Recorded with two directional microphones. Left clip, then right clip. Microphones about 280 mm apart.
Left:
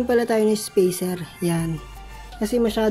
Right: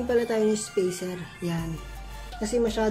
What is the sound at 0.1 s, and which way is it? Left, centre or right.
A woman's voice, left.